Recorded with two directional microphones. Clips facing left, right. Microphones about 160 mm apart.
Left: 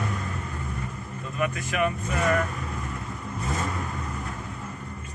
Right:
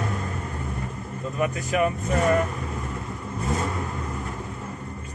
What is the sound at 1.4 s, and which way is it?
Speech, 35° right (ahead or behind).